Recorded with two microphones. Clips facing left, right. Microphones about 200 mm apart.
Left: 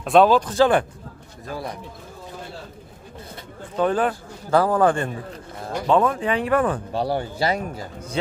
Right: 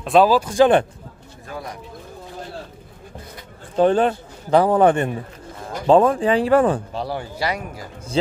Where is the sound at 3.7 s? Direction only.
30° right (ahead or behind).